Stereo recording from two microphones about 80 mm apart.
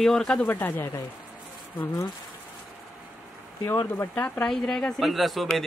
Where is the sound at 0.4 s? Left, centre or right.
Left.